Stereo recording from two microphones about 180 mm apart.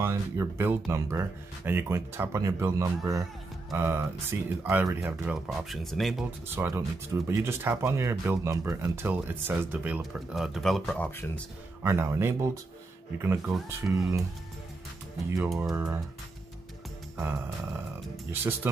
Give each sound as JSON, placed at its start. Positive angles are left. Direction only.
{"t": 0.0, "sound": "speech", "side_deg": -15}
{"t": 6.5, "sound": "speech", "side_deg": -10}
{"t": 11.1, "sound": "speech", "side_deg": 10}
{"t": 11.8, "sound": "speech", "side_deg": -15}
{"t": 13.5, "sound": "speech", "side_deg": 0}
{"t": 15.2, "sound": "speech", "side_deg": -15}
{"t": 18.3, "sound": "speech", "side_deg": -10}